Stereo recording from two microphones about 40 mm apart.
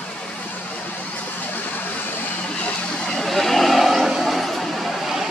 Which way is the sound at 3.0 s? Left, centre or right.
Centre.